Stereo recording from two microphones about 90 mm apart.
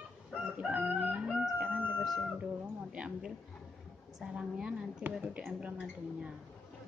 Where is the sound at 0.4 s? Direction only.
10° right (ahead or behind).